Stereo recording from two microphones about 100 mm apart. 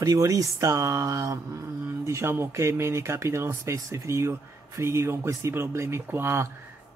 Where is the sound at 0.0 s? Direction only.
35° right (ahead or behind).